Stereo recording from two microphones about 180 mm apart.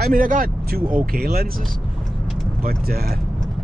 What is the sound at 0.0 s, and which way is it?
Speech, 50° right (ahead or behind).